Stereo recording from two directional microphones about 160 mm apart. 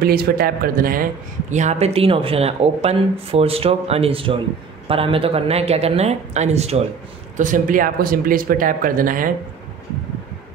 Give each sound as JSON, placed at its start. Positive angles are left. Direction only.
{"t": 0.0, "sound": "speech", "side_deg": -70}
{"t": 1.5, "sound": "speech", "side_deg": -45}
{"t": 7.3, "sound": "speech", "side_deg": -55}